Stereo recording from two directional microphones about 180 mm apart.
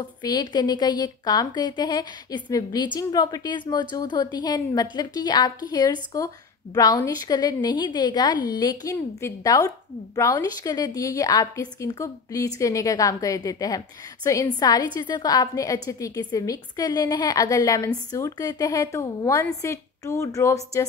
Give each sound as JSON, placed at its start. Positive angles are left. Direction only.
{"t": 0.0, "sound": "a woman's voice", "side_deg": 20}